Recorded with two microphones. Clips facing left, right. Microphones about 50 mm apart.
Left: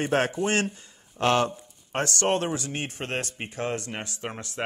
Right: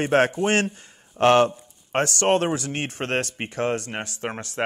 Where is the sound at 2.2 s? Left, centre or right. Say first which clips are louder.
Right 4 dB; right.